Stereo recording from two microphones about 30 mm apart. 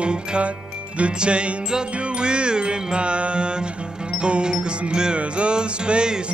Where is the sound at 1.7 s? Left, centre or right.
Right.